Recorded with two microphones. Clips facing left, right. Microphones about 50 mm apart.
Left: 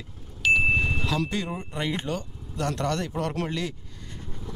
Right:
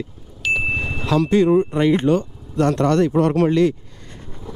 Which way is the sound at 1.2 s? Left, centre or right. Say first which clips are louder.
Right 16 dB; right.